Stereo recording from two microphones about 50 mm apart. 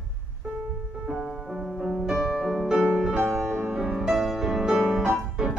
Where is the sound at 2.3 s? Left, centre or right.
Centre.